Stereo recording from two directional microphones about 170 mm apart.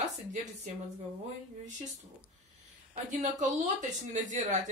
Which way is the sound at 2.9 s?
45° right (ahead or behind).